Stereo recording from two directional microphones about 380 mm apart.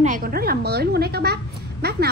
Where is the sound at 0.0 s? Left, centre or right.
Right.